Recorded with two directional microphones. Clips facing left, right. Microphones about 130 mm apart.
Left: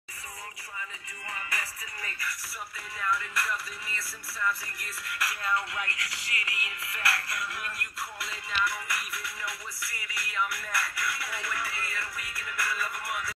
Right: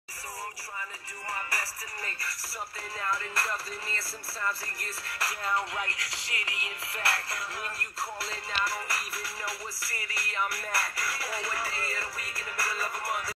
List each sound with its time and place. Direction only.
1.3 s music: 35° right (ahead or behind)
3.0 s music: 35° right (ahead or behind)